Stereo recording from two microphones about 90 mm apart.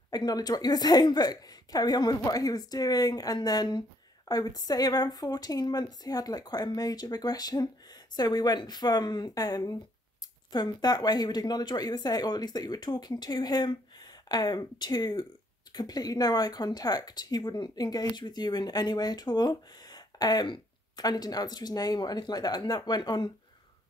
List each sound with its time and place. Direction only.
0.1 s speech: 50° left (ahead or behind)